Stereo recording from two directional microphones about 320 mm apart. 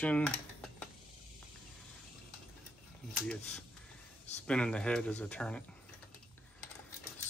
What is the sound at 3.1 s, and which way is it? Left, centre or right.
Speech, centre.